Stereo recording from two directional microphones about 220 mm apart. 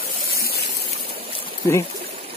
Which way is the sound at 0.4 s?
45° left (ahead or behind).